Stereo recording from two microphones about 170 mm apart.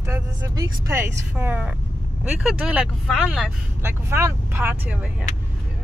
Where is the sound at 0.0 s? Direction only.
15° right (ahead or behind).